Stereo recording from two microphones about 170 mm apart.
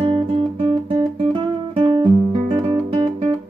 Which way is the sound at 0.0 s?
35° right (ahead or behind).